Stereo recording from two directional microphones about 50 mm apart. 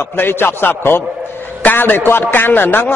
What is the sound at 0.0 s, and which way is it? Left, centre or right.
A man's voice, left.